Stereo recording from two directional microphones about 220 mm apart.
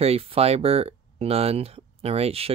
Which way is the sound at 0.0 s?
25° right (ahead or behind).